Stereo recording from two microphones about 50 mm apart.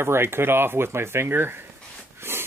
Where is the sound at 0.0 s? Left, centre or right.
Right.